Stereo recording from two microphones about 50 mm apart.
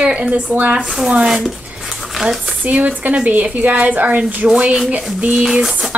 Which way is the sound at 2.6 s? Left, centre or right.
Right.